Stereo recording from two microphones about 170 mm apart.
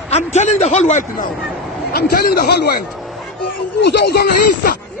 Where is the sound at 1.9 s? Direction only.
65° left (ahead or behind).